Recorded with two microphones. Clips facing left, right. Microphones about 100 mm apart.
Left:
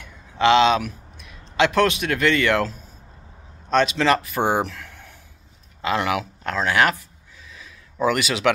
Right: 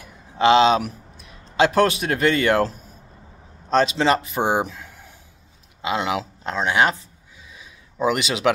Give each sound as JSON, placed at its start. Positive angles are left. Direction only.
{"t": 0.0, "sound": "a man's voice", "side_deg": -30}
{"t": 3.7, "sound": "a man's voice", "side_deg": -25}
{"t": 7.5, "sound": "a sound", "side_deg": -20}